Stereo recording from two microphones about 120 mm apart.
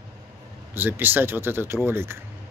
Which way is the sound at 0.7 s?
15° right (ahead or behind).